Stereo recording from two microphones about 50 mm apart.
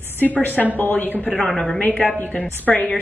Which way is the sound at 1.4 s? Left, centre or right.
Centre.